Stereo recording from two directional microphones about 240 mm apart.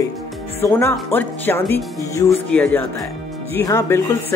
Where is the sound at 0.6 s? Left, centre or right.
Centre.